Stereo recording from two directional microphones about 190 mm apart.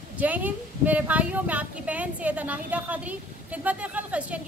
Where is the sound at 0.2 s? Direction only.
10° right (ahead or behind).